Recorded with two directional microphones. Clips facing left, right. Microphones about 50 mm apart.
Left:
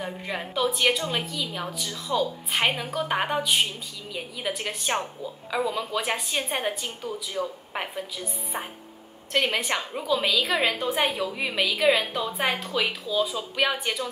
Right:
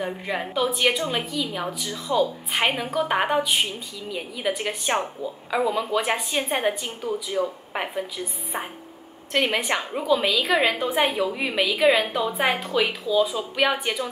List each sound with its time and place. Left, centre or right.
0.0 s a woman's voice: centre
7.7 s a woman's voice: centre